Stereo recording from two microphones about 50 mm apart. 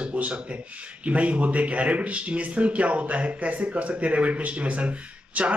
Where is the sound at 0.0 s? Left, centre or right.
Right.